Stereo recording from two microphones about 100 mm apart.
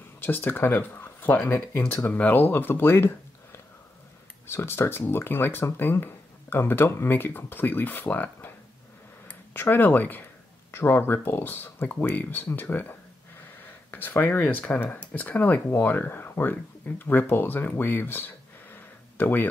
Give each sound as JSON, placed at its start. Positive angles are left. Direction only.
{"t": 0.2, "sound": "speech", "side_deg": 20}
{"t": 4.5, "sound": "speech", "side_deg": 25}